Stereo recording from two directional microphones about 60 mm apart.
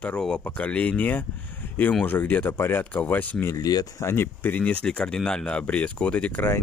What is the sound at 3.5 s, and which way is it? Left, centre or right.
Speech, left.